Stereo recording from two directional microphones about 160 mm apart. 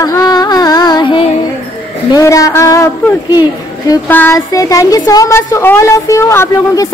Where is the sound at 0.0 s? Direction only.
25° left (ahead or behind).